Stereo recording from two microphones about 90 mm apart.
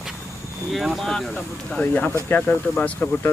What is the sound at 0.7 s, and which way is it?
Speech, centre (ahead or behind).